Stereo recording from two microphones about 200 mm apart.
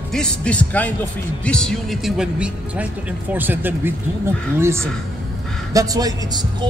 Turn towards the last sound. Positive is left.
turn(degrees=-20)  # may be behind; listen again after turning